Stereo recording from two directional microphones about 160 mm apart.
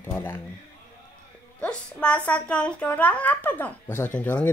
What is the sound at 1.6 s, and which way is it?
Speech, 5° left (ahead or behind).